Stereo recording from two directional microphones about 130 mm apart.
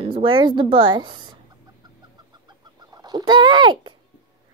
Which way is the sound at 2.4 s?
30° right (ahead or behind).